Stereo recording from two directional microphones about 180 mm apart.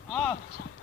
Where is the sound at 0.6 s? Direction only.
55° left (ahead or behind).